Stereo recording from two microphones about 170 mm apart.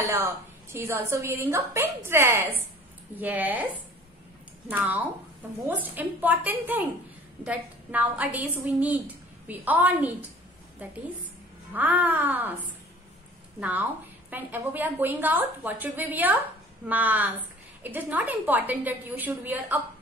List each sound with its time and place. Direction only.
0.1 s a woman's voice: 15° right (ahead or behind)
4.6 s a woman's voice: 10° right (ahead or behind)
13.6 s a woman's voice: 10° right (ahead or behind)